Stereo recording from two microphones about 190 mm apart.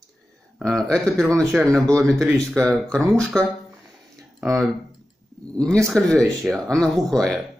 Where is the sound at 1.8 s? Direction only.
5° left (ahead or behind).